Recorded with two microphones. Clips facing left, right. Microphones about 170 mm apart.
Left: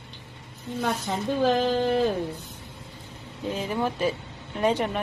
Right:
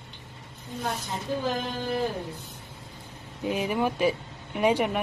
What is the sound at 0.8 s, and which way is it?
A woman's voice, 70° left (ahead or behind).